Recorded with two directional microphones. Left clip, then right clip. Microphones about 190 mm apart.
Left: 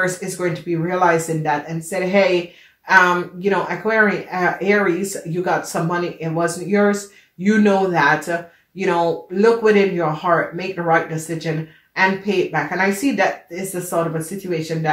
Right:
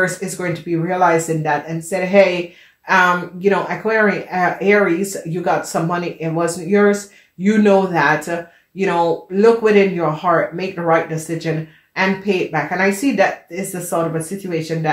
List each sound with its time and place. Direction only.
0.0 s speech: 35° right (ahead or behind)